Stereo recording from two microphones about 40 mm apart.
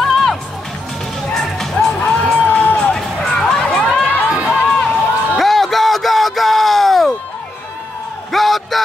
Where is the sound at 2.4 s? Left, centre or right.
Left.